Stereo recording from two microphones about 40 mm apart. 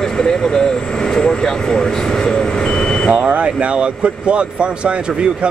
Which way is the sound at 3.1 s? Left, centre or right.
Right.